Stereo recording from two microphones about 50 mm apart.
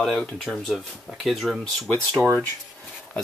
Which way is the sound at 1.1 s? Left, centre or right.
Centre.